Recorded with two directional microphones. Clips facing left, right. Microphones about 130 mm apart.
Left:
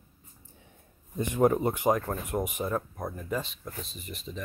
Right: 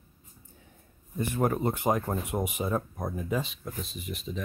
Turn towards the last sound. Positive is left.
turn(degrees=-5)  # may be behind; listen again after turning